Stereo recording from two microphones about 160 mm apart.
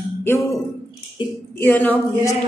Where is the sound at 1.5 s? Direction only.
10° left (ahead or behind).